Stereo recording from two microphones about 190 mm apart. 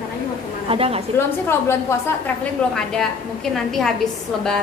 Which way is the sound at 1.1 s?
15° left (ahead or behind).